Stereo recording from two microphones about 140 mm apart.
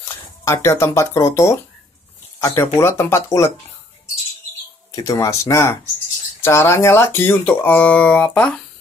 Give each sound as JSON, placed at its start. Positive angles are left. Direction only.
{"t": 0.5, "sound": "speech", "side_deg": 20}
{"t": 4.9, "sound": "speech", "side_deg": 25}